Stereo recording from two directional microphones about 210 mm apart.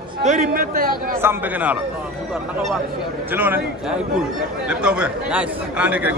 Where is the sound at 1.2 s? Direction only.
10° right (ahead or behind).